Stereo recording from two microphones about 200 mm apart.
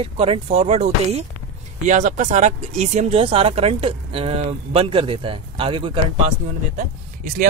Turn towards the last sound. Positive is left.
turn(degrees=-40)  # may be behind; listen again after turning